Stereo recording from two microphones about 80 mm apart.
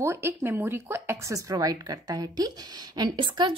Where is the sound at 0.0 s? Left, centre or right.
Right.